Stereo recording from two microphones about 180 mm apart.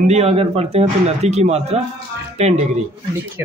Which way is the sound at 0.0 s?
35° right (ahead or behind).